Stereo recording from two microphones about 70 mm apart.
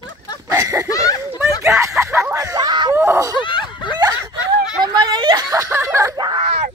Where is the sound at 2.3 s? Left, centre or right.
Right.